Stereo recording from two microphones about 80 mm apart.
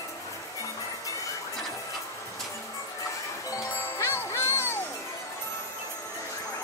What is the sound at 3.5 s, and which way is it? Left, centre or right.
Music, left.